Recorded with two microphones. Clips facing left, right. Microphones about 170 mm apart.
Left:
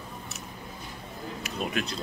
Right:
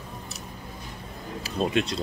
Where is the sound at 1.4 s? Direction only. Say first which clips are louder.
Right 6 dB; 30° right (ahead or behind).